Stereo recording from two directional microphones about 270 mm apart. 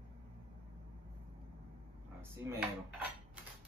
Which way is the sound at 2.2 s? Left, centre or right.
Centre.